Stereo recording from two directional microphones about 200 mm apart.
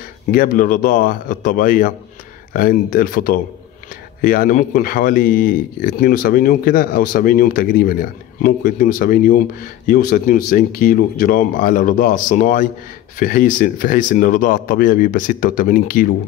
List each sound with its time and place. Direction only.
0.3 s speech: 45° left (ahead or behind)